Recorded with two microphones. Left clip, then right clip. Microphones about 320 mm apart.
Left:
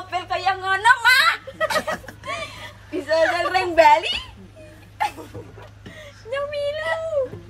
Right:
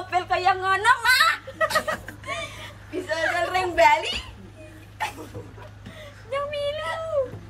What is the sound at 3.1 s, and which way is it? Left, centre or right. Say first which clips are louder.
A woman's voice: left 5 dB; left.